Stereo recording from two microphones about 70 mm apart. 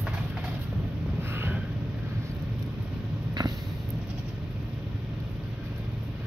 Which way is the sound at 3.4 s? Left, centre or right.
Right.